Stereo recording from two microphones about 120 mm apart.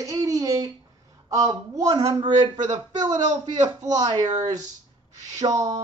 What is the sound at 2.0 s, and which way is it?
Speech, 40° right (ahead or behind).